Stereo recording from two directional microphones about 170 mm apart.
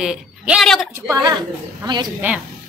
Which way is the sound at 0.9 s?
20° right (ahead or behind).